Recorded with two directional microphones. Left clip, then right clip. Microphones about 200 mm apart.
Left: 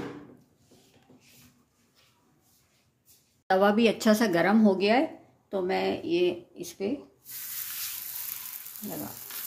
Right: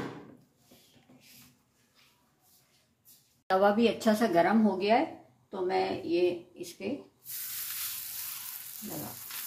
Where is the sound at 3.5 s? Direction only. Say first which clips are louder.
Left 2 dB; 35° left (ahead or behind); by 6.9 s 50° left (ahead or behind).